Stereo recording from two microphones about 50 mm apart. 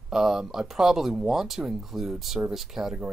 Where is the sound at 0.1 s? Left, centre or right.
Centre.